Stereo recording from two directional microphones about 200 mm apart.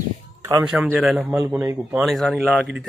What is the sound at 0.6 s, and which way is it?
A man's voice, 5° right (ahead or behind).